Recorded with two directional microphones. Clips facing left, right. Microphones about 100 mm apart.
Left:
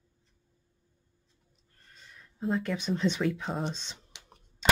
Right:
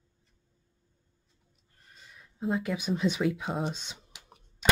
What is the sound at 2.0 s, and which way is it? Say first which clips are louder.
Speech: even; 10° right (ahead or behind).